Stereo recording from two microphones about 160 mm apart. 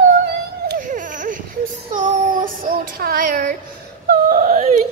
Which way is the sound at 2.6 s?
65° right (ahead or behind).